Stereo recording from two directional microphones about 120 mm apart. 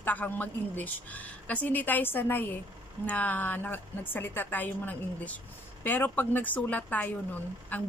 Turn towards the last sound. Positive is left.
turn(degrees=15)  # may be behind; listen again after turning